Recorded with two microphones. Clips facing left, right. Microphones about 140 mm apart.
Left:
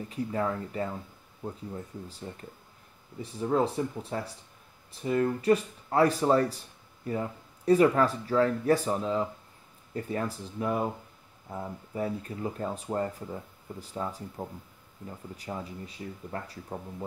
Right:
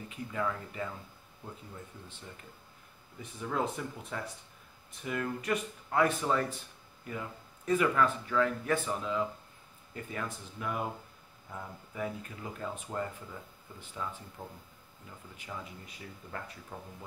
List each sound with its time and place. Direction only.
0.1 s speech: 35° left (ahead or behind)
3.2 s speech: 35° left (ahead or behind)